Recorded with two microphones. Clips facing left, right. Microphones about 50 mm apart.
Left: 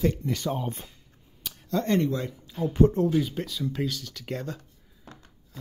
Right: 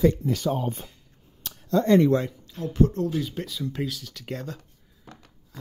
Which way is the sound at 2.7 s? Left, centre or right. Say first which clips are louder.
Left 2 dB; left.